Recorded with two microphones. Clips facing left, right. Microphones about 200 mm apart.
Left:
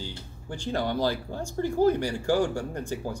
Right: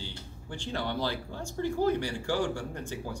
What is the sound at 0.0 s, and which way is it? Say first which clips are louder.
Speech: left 4 dB; 45° left (ahead or behind).